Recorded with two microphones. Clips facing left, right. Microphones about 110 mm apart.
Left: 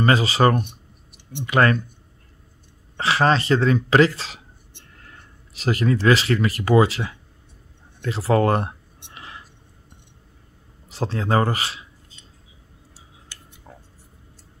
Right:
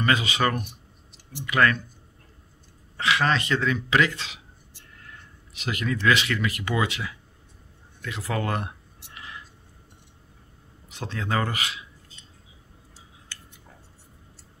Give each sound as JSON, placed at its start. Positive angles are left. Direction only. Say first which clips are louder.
{"t": 0.0, "sound": "speech", "louder": "left 6 dB", "side_deg": 35}
{"t": 3.0, "sound": "speech", "louder": "left 5 dB", "side_deg": 35}
{"t": 5.5, "sound": "speech", "louder": "left 7 dB", "side_deg": 35}
{"t": 8.0, "sound": "a sound", "louder": "left 10 dB", "side_deg": 35}
{"t": 10.9, "sound": "speech", "louder": "left 7 dB", "side_deg": 35}